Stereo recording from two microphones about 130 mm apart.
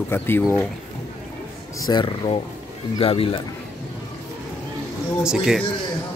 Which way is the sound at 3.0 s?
45° left (ahead or behind).